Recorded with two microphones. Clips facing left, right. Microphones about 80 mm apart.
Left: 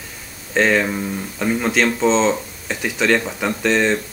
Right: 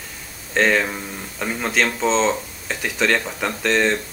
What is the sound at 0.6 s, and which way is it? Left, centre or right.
Speech, centre.